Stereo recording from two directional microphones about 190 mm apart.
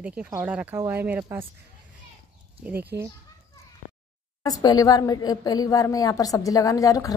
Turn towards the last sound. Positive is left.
turn(degrees=15)  # may be behind; listen again after turning